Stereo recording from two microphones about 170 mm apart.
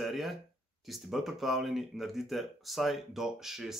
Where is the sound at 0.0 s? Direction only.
Centre (ahead or behind).